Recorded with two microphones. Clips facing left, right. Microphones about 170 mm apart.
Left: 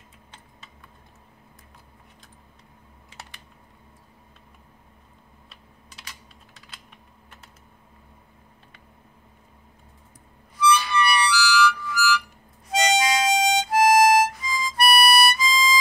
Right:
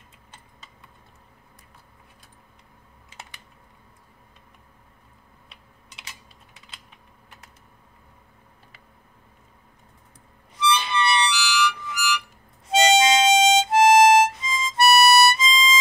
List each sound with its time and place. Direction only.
10.6 s harmonica: 25° right (ahead or behind)